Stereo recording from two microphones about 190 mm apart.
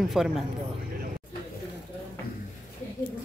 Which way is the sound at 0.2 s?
Centre (ahead or behind).